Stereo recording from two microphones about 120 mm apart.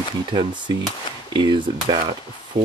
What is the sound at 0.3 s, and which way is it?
Speech, 40° right (ahead or behind).